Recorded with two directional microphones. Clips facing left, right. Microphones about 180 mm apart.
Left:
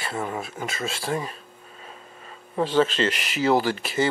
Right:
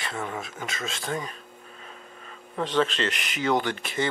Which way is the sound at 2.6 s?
5° left (ahead or behind).